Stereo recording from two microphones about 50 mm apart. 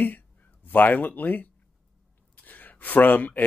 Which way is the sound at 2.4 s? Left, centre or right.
Left.